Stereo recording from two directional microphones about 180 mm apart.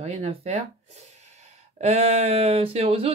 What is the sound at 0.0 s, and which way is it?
Speech, 35° right (ahead or behind).